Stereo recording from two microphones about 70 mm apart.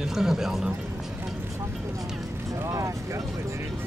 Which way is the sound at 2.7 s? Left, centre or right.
Right.